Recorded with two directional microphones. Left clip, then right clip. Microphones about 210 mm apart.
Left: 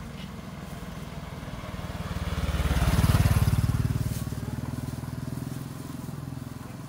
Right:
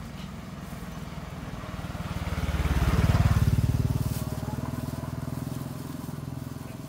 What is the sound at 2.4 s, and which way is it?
Vehicle, 35° left (ahead or behind).